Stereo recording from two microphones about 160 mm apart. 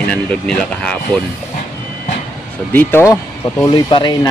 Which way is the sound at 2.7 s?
15° left (ahead or behind).